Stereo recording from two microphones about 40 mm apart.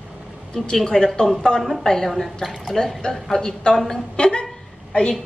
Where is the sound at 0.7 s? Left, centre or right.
Centre.